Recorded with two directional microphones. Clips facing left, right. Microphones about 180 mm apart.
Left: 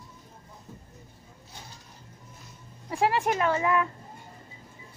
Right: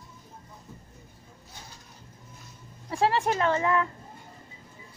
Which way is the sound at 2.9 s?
15° left (ahead or behind).